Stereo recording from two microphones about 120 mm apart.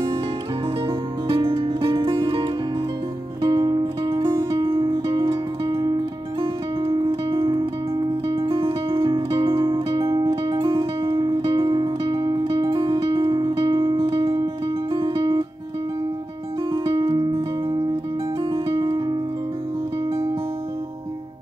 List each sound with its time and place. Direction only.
0.8 s music: 45° right (ahead or behind)
7.1 s music: 45° right (ahead or behind)
16.7 s music: 40° right (ahead or behind)
18.5 s music: 40° right (ahead or behind)